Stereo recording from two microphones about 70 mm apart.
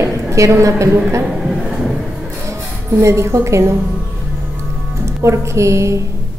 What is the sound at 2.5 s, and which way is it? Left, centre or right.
A woman's voice, right.